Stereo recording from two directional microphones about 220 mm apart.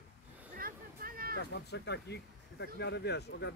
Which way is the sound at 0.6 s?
40° right (ahead or behind).